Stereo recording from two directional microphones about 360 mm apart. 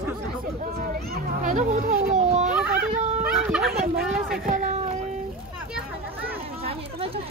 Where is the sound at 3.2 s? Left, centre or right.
Centre.